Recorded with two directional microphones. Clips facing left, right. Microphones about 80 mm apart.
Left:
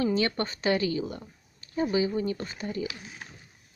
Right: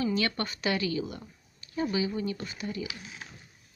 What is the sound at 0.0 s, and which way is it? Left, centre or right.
A woman's voice, left.